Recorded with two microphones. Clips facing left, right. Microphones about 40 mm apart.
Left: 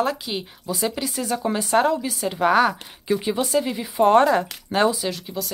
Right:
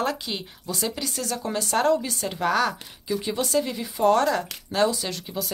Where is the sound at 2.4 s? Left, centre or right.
Centre.